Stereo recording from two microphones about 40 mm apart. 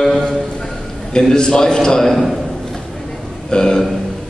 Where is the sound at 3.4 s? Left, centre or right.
Centre.